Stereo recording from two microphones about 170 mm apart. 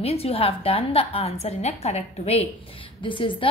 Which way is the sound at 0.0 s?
35° left (ahead or behind).